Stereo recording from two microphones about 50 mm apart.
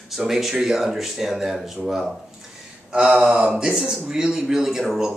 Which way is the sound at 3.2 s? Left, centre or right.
Centre.